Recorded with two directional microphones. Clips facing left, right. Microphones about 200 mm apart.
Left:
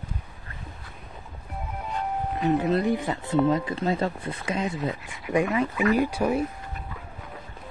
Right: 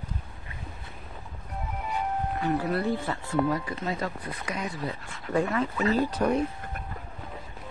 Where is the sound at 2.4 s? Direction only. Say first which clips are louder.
Left 5 dB; 20° left (ahead or behind).